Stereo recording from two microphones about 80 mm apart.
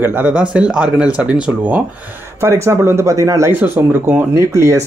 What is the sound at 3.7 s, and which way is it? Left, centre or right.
Speech, right.